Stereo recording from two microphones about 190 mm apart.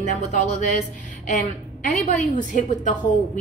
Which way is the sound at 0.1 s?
40° left (ahead or behind).